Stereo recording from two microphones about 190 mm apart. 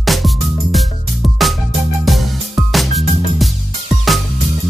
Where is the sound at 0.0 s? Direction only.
Centre (ahead or behind).